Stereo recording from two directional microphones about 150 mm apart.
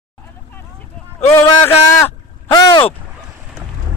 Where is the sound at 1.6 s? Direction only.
15° left (ahead or behind).